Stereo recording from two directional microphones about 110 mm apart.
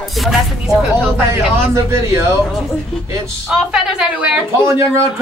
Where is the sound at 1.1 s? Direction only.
20° right (ahead or behind).